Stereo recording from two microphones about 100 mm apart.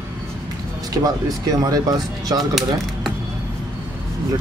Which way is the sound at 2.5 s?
Centre (ahead or behind).